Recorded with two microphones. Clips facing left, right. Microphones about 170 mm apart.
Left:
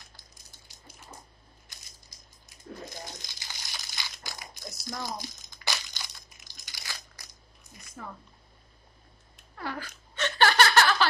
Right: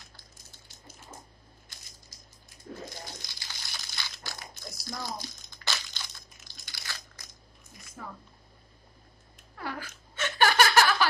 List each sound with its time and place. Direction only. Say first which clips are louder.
0.7 s bathtub: right 2 dB; 15° left (ahead or behind)
3.2 s crumpling: left 1 dB; 15° left (ahead or behind)
8.0 s speech: left 1 dB; 5° right (ahead or behind)
9.6 s a sound: left 1 dB; 10° right (ahead or behind)